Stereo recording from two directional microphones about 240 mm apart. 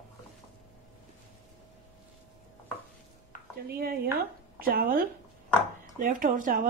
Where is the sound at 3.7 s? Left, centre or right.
Right.